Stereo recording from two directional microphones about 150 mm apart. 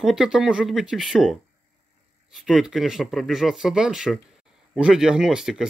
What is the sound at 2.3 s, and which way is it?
Speech, centre (ahead or behind).